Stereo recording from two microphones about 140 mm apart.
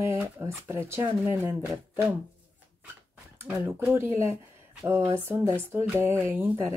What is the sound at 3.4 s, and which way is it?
Speech, 15° right (ahead or behind).